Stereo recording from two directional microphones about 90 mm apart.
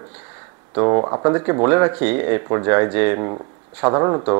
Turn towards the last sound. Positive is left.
turn(degrees=-30)  # may be behind; listen again after turning